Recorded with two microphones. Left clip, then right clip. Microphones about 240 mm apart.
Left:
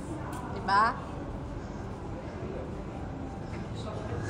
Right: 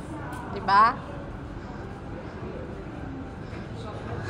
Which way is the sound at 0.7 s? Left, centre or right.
Centre.